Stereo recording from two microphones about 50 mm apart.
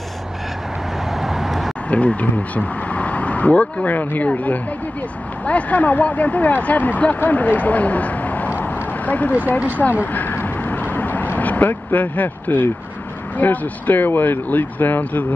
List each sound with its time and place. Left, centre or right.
1.1 s vehicle: centre
1.9 s speech: left
5.4 s speech: left
8.5 s a sound: left
10.1 s vehicle: left
13.4 s speech: left